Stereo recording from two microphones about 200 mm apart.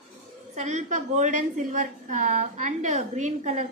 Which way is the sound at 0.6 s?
35° right (ahead or behind).